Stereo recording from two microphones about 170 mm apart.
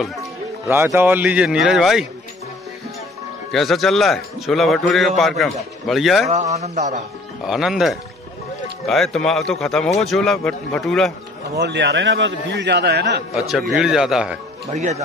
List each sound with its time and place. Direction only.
0.0 s a man's voice: centre (ahead or behind)
0.7 s speech: 15° right (ahead or behind)
3.5 s a man's voice: centre (ahead or behind)
6.3 s a man's voice: 40° right (ahead or behind)
7.4 s a man's voice: centre (ahead or behind)
11.5 s a man's voice: 80° right
13.3 s a man's voice: centre (ahead or behind)
14.7 s a man's voice: 45° right (ahead or behind)